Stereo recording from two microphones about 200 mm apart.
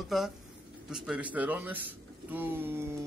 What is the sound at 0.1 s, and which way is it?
A man's voice, centre (ahead or behind).